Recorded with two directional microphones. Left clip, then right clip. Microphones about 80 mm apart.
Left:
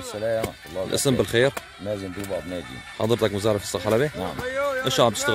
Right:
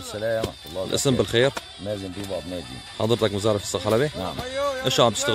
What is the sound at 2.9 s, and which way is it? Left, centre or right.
Speech, centre.